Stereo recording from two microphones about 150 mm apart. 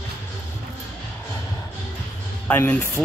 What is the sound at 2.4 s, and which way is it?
Speech, 10° left (ahead or behind).